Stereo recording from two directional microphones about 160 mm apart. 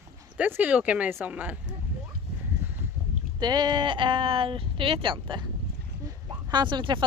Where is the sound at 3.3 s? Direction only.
25° right (ahead or behind).